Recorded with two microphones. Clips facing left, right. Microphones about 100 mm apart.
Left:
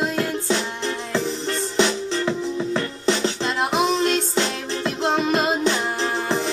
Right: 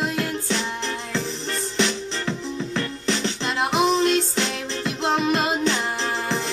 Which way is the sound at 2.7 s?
35° left (ahead or behind).